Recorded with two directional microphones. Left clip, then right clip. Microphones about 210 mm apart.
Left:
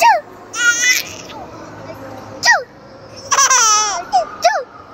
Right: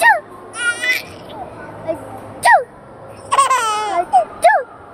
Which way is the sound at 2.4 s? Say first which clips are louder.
Right 2 dB; 35° right (ahead or behind).